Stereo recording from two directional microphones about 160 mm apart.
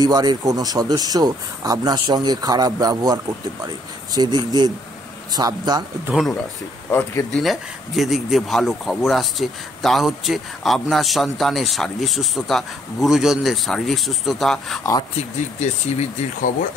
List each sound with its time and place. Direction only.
0.0 s speech: 25° right (ahead or behind)
6.1 s speech: 5° right (ahead or behind)
6.9 s speech: 15° left (ahead or behind)
7.3 s speech: centre (ahead or behind)
14.8 s speech: 25° left (ahead or behind)
15.1 s speech: 45° left (ahead or behind)